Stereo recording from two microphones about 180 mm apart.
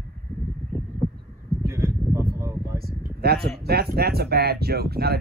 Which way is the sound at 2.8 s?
60° right (ahead or behind).